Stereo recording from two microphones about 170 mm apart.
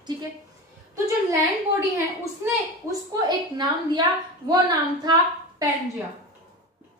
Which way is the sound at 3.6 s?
25° right (ahead or behind).